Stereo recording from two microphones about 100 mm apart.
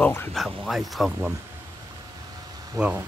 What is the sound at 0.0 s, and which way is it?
Speech, 20° left (ahead or behind).